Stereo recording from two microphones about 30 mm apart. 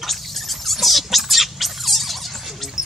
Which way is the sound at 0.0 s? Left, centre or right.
Centre.